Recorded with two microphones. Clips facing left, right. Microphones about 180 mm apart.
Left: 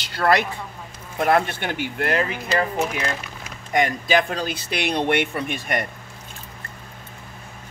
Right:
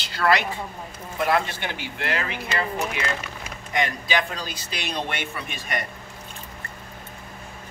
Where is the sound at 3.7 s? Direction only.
50° left (ahead or behind).